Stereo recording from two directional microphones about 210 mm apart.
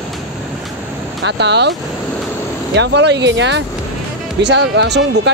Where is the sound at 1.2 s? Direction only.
55° right (ahead or behind).